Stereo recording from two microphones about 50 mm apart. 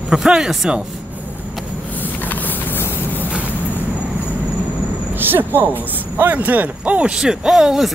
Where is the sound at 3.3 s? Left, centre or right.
Right.